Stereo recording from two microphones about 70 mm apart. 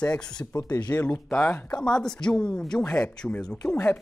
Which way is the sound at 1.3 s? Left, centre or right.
Left.